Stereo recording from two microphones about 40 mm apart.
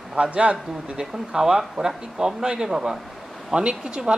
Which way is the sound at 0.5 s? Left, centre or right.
Centre.